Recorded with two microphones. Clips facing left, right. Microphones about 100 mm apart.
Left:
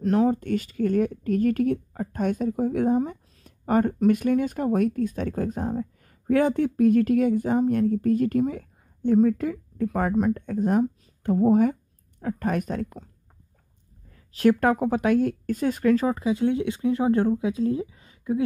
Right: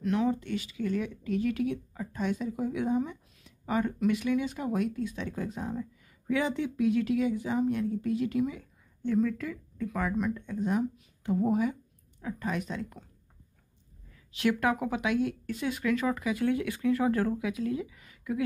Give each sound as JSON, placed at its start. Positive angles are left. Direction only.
{"t": 0.0, "sound": "speech", "side_deg": 40}
{"t": 14.1, "sound": "speech", "side_deg": 40}